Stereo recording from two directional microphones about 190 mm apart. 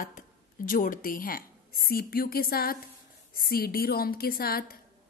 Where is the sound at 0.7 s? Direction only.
45° left (ahead or behind).